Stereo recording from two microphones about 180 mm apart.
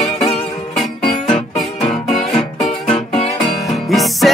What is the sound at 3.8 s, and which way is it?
Music, centre (ahead or behind).